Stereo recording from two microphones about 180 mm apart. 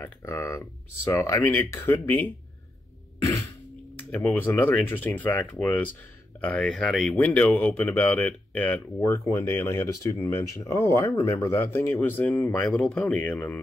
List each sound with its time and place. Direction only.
0.0 s speech: 15° left (ahead or behind)
4.1 s speech: 10° left (ahead or behind)